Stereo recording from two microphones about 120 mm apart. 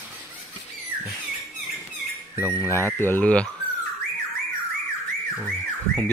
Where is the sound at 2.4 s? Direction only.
25° left (ahead or behind).